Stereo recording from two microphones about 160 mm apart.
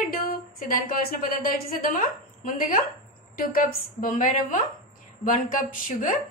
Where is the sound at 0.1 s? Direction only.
65° left (ahead or behind).